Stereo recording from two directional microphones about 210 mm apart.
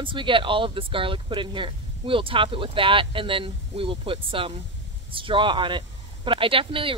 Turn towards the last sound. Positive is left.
turn(degrees=-25)  # may be behind; listen again after turning